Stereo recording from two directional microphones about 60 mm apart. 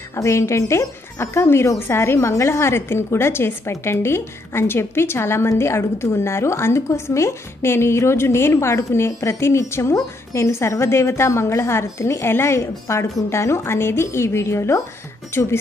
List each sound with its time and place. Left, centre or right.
0.1 s a woman's voice: left